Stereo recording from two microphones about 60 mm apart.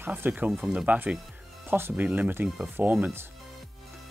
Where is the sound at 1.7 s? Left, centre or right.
Right.